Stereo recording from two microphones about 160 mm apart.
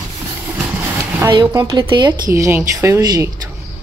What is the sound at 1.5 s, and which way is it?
Speech, 30° right (ahead or behind).